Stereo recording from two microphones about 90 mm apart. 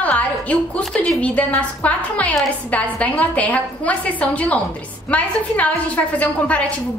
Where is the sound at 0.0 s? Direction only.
15° left (ahead or behind).